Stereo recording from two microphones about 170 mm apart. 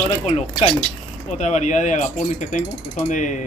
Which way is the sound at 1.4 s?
45° left (ahead or behind).